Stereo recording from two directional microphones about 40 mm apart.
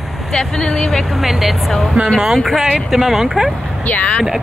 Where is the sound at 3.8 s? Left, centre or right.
Left.